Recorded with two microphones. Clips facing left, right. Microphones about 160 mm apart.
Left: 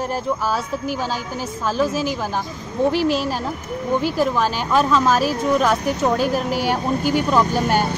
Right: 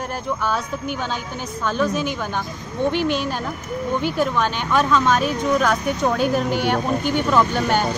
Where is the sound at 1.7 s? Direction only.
5° left (ahead or behind).